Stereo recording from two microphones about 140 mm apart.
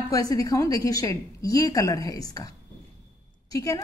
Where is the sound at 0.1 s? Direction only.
25° left (ahead or behind).